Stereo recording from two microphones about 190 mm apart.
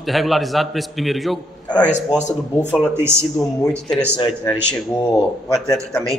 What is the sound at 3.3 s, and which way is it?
Speech, 5° left (ahead or behind).